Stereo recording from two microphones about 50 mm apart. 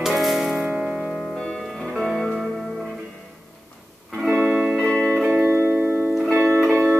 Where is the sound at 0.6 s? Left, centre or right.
Centre.